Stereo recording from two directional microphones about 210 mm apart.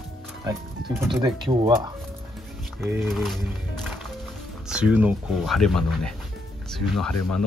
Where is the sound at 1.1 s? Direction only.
20° right (ahead or behind).